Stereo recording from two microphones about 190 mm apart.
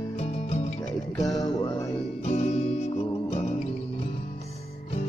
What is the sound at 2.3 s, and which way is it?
Music, 35° left (ahead or behind).